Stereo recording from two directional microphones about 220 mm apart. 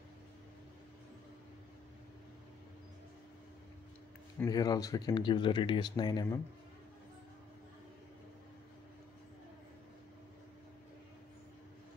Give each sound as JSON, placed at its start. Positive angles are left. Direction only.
{"t": 4.4, "sound": "speech", "side_deg": 15}